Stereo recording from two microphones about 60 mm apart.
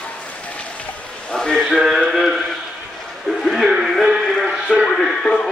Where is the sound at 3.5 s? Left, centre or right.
Centre.